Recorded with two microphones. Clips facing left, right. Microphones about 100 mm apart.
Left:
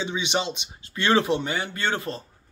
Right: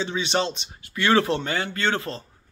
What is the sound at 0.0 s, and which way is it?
Speech, 15° left (ahead or behind).